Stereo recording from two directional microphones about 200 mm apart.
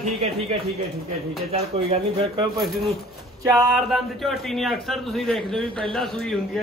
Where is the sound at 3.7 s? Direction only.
Centre (ahead or behind).